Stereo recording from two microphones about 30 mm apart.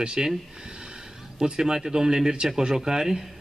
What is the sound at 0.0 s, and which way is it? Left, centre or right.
Speech, right.